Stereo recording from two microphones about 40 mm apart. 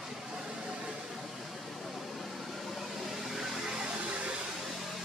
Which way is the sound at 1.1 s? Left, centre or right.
Centre.